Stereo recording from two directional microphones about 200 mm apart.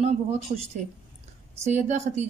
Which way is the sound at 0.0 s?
35° right (ahead or behind).